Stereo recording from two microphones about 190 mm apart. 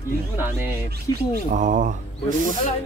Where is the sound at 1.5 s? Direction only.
40° right (ahead or behind).